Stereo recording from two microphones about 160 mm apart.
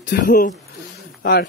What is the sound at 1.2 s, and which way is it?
Speech, 80° left.